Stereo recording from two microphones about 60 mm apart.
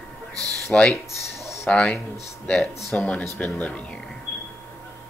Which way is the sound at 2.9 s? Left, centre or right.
Left.